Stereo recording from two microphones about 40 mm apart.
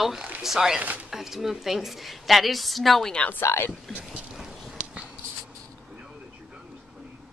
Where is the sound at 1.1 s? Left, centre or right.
Centre.